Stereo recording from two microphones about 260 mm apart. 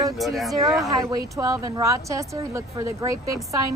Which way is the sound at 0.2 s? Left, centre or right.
Centre.